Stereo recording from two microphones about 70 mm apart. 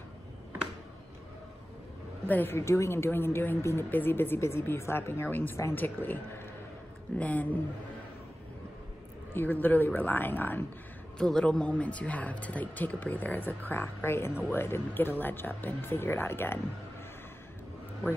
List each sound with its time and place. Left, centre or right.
2.2 s speech: left
2.5 s speech: left
7.2 s speech: left
9.3 s speech: left
11.1 s speech: centre; by 16.5 s left